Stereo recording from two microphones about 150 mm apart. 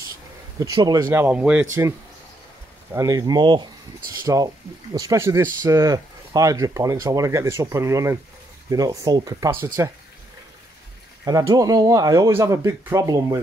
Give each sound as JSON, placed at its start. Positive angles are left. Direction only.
{"t": 0.6, "sound": "speech", "side_deg": -25}
{"t": 1.1, "sound": "speech", "side_deg": -10}
{"t": 1.7, "sound": "speech", "side_deg": -20}
{"t": 11.2, "sound": "speech", "side_deg": -25}